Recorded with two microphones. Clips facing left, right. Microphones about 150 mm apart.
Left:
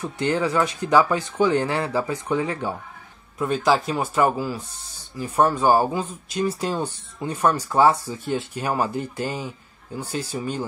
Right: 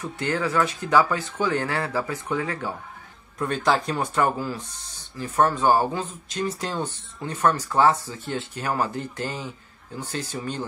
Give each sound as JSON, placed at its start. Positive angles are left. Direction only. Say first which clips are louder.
{"t": 0.0, "sound": "speech", "louder": "left 3 dB", "side_deg": 20}
{"t": 3.3, "sound": "speech", "louder": "left 3 dB", "side_deg": 5}